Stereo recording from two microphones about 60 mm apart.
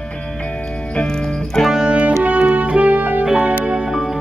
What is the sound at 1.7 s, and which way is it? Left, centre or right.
Music, centre.